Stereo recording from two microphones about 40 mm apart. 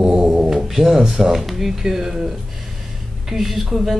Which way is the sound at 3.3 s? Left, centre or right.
Centre.